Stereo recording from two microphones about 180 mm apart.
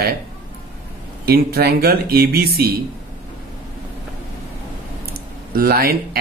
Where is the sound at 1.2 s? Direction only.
60° right (ahead or behind).